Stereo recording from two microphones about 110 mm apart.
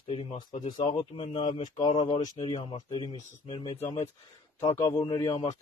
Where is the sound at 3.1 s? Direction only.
60° left (ahead or behind).